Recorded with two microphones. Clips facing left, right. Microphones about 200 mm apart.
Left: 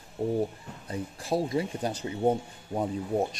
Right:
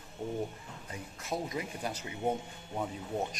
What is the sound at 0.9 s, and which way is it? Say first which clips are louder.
Speech: left 8 dB; 35° left (ahead or behind).